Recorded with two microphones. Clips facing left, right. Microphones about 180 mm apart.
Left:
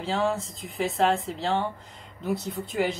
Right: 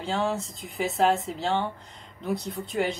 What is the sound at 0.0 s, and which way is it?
Speech, centre (ahead or behind).